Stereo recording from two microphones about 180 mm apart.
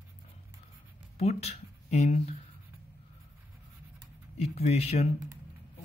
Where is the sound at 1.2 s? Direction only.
35° left (ahead or behind).